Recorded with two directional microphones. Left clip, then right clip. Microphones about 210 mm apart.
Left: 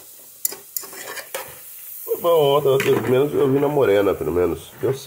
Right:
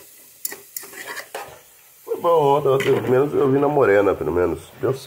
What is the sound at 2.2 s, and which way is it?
Speech, 15° left (ahead or behind).